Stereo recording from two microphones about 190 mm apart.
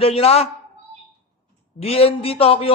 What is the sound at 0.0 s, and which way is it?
Speech, 30° left (ahead or behind).